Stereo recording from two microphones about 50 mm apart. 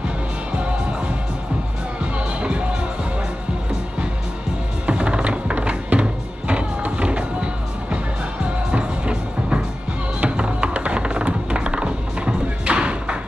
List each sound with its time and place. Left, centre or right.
0.5 s music: right
2.1 s music: right
4.8 s music: right
8.7 s music: right